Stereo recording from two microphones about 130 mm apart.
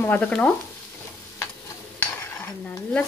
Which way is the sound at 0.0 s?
10° left (ahead or behind).